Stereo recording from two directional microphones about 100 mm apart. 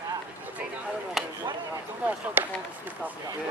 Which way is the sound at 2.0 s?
20° right (ahead or behind).